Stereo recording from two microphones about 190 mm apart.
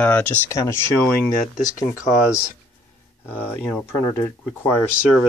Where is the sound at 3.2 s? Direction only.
10° left (ahead or behind).